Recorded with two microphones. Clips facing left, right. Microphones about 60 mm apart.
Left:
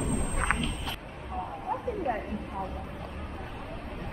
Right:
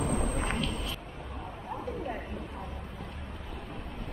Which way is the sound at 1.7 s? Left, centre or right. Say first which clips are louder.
Left 5 dB; left.